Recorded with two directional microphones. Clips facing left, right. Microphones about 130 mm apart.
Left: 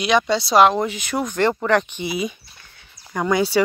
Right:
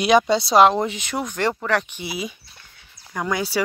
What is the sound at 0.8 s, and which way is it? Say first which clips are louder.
Speech: left 2 dB; 25° right (ahead or behind).